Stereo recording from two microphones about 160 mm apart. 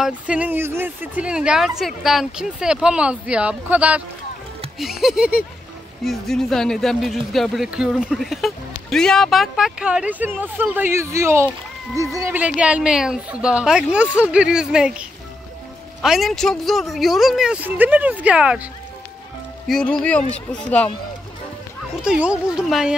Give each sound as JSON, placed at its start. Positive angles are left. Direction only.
{"t": 0.0, "sound": "speech", "side_deg": -10}
{"t": 12.4, "sound": "speech", "side_deg": -5}
{"t": 19.7, "sound": "speech", "side_deg": 5}
{"t": 22.0, "sound": "speech", "side_deg": -5}